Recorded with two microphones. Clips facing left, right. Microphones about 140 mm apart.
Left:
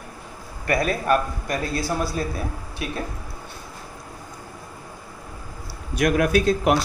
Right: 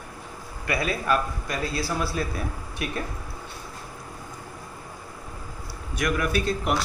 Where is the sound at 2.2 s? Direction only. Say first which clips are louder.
Left 2 dB; 35° left (ahead or behind).